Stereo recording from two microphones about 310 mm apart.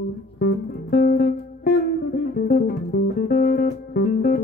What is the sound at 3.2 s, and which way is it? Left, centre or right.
Music, left.